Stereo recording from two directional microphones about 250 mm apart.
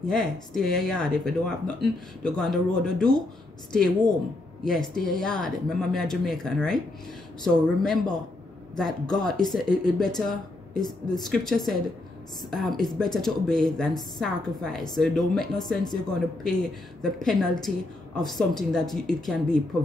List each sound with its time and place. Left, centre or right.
0.1 s speech: centre
4.6 s speech: centre
10.8 s a woman's voice: centre
11.2 s speech: centre